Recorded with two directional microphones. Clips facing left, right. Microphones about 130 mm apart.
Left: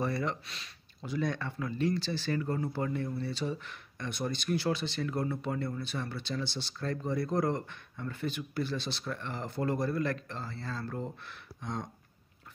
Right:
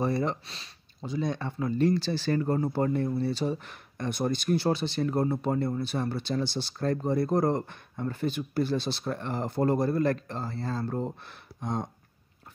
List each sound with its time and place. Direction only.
0.0 s speech: 30° right (ahead or behind)
1.8 s speech: 40° right (ahead or behind)